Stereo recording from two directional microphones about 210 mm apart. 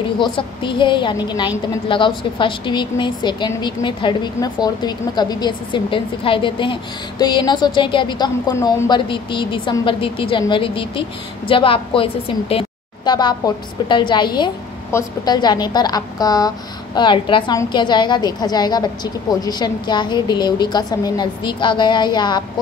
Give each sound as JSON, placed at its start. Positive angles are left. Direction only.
{"t": 0.2, "sound": "a woman's voice", "side_deg": 25}